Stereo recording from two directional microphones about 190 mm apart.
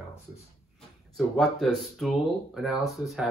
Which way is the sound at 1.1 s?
Centre (ahead or behind).